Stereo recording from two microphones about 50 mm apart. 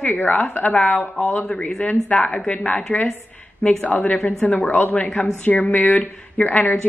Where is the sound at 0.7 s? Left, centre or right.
Centre.